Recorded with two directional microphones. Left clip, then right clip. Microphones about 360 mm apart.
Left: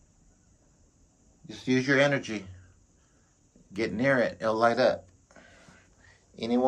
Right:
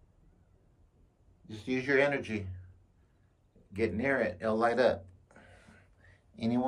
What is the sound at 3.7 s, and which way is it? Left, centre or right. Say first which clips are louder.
Speech: left 4 dB; centre.